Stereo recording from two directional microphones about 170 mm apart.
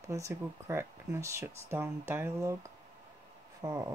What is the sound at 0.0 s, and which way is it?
Speech, 20° right (ahead or behind).